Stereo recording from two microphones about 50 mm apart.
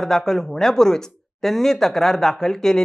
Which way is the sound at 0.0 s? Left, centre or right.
Centre.